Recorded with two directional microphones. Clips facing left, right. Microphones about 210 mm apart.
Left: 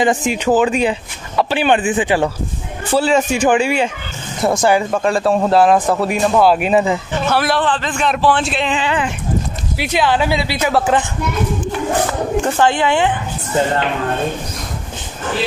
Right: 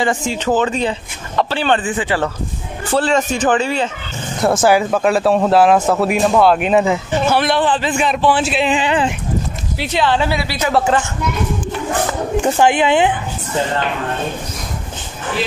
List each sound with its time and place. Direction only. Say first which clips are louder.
0.0 s speech: left 2 dB; 20° left (ahead or behind)
4.4 s speech: right 1 dB; centre (ahead or behind)
7.6 s speech: right 2 dB; 10° right (ahead or behind)
9.8 s speech: left 1 dB; 10° left (ahead or behind)
12.4 s speech: right 3 dB; 15° right (ahead or behind)